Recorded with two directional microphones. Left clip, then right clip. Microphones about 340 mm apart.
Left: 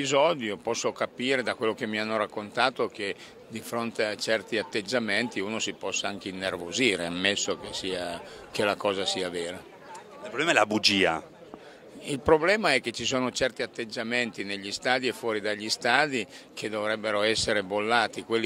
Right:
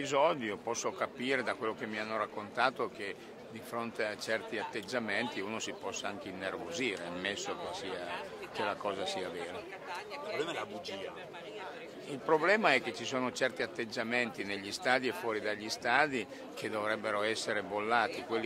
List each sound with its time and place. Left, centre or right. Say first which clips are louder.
0.0 s speech: left 6 dB; left
12.1 s speech: left 7 dB; left